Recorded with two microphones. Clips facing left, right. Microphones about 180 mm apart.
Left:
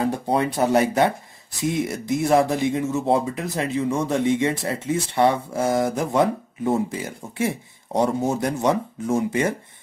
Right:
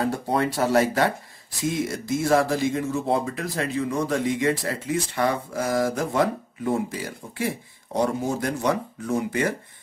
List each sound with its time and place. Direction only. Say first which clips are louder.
0.0 s speech: left 2 dB; 20° left (ahead or behind)